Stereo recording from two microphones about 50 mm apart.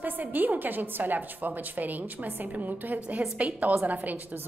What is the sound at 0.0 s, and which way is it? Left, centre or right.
A woman's voice, right.